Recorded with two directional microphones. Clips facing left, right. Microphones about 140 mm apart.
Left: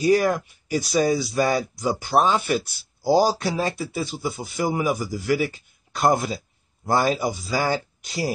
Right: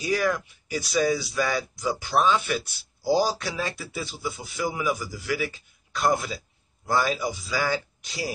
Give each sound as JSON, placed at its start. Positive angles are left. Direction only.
{"t": 0.0, "sound": "speech", "side_deg": 40}